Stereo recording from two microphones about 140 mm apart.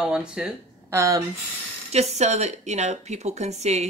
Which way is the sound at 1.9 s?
50° right (ahead or behind).